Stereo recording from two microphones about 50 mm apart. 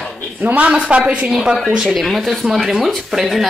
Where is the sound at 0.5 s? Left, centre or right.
Right.